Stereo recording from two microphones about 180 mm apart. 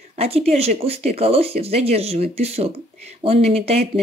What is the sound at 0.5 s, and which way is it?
Speech, 35° right (ahead or behind).